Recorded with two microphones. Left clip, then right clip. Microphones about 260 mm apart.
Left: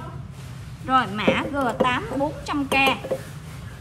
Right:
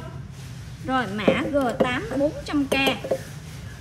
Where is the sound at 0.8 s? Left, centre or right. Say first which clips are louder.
Left 3 dB; left.